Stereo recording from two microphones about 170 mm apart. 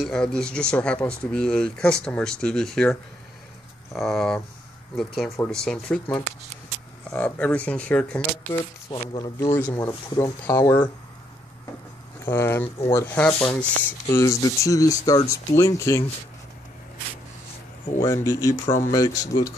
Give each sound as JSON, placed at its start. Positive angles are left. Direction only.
{"t": 0.0, "sound": "speech", "side_deg": 5}
{"t": 3.9, "sound": "speech", "side_deg": 0}
{"t": 8.5, "sound": "speech", "side_deg": 20}
{"t": 12.3, "sound": "speech", "side_deg": 15}
{"t": 18.0, "sound": "speech", "side_deg": 15}